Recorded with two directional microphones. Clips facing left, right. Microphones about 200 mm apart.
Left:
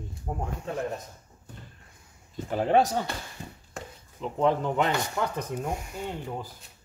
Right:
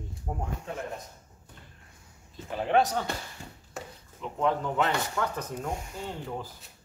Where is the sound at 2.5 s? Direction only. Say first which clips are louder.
Left 3 dB; 40° left (ahead or behind).